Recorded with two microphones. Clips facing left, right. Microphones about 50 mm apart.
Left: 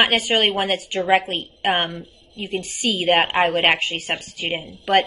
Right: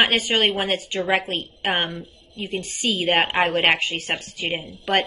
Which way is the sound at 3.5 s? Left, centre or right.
Left.